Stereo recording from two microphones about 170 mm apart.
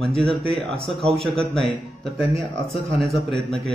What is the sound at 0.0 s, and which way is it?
A man's voice, centre (ahead or behind).